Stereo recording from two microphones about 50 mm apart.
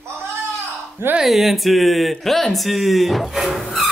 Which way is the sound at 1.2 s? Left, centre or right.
Centre.